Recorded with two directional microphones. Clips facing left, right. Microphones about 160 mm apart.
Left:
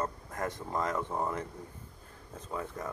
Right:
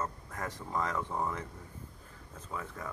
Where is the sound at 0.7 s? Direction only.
15° left (ahead or behind).